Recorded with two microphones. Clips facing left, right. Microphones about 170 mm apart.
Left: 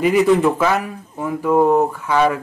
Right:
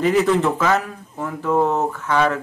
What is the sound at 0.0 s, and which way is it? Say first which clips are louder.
Speech: left 3 dB; 10° left (ahead or behind).